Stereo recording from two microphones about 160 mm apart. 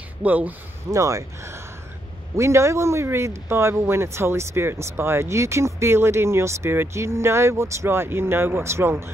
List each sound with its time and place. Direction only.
0.2 s speech: 10° right (ahead or behind)